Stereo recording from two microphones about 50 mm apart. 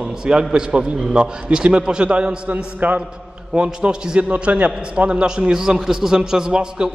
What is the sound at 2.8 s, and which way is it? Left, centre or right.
Speech, right.